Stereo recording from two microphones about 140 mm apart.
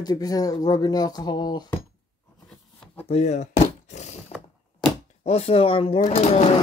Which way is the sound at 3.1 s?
55° left (ahead or behind).